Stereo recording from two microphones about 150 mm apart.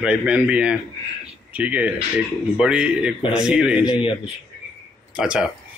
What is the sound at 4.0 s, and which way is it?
Speech, 35° left (ahead or behind).